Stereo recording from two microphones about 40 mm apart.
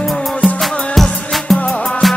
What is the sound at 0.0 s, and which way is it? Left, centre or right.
Music, centre.